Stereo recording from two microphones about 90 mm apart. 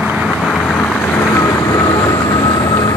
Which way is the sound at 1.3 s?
35° left (ahead or behind).